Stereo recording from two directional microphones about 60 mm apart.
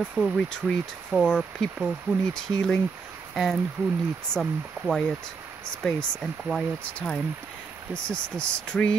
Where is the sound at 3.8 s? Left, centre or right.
Right.